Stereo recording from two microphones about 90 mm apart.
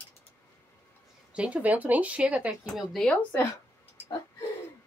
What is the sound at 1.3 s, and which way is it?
Speech, 15° right (ahead or behind).